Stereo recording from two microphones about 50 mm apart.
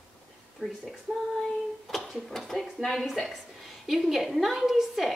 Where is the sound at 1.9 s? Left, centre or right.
Centre.